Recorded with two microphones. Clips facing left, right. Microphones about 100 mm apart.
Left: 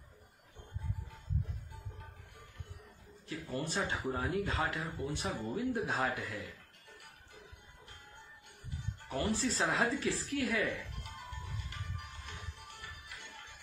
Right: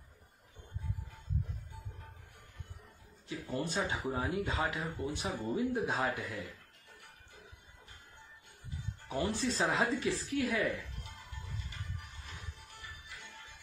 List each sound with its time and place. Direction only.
3.3 s speech: centre (ahead or behind)
9.1 s speech: centre (ahead or behind)
12.8 s music: 65° left (ahead or behind)